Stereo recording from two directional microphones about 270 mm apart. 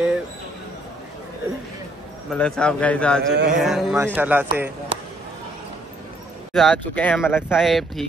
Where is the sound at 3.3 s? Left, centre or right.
Right.